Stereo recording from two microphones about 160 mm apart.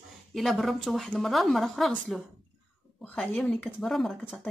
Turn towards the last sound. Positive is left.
turn(degrees=0)  # may be behind; listen again after turning